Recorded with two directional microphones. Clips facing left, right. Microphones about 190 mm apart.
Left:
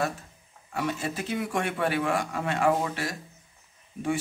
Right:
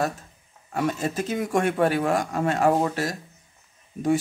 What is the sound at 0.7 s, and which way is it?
A man's voice, 45° right (ahead or behind).